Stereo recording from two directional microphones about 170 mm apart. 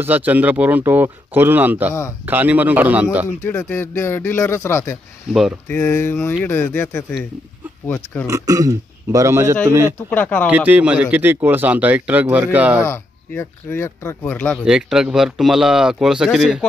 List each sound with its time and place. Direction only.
0.0 s a man's voice: 10° right (ahead or behind)
3.4 s speech: 10° left (ahead or behind)
8.3 s a man's voice: 20° right (ahead or behind)
10.0 s speech: 10° left (ahead or behind)
10.5 s a man's voice: 10° right (ahead or behind)
12.8 s speech: 15° left (ahead or behind)
14.6 s speech: 5° right (ahead or behind)